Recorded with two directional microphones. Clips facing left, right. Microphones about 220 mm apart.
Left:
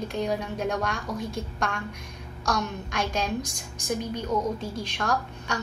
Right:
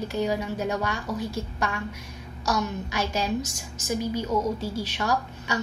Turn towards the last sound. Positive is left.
turn(degrees=-5)  # may be behind; listen again after turning